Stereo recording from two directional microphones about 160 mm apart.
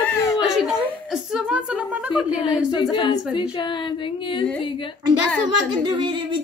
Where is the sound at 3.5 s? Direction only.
30° left (ahead or behind).